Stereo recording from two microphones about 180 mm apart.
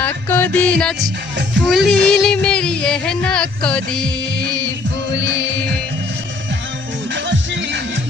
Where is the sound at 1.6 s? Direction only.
Centre (ahead or behind).